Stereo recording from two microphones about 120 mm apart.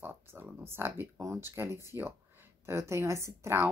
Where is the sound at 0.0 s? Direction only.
15° right (ahead or behind).